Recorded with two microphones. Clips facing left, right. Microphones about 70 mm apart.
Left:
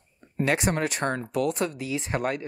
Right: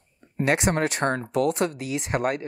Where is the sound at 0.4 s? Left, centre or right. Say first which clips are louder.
Right 2 dB; right.